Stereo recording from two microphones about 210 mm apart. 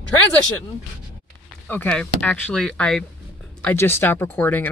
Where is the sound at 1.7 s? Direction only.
5° left (ahead or behind).